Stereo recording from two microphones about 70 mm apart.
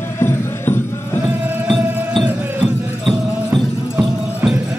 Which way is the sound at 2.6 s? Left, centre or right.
Centre.